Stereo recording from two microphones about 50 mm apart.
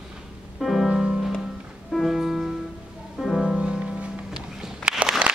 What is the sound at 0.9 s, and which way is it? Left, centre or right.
Music, centre.